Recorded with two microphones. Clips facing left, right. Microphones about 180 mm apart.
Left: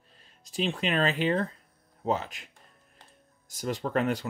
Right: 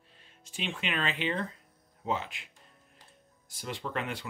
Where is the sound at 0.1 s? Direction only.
40° left (ahead or behind).